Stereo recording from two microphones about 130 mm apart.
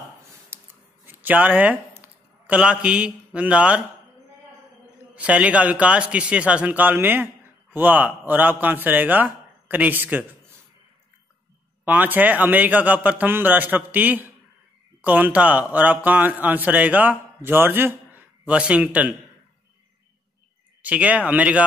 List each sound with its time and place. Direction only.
0.5 s scissors: 20° right (ahead or behind)
1.0 s a sound: 15° right (ahead or behind)
3.3 s a man's voice: 10° right (ahead or behind)
5.1 s a man's voice: 10° right (ahead or behind)
11.8 s a man's voice: 15° right (ahead or behind)
20.8 s a man's voice: 10° right (ahead or behind)